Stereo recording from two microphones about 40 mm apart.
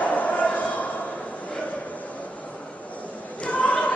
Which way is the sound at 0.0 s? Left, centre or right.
Left.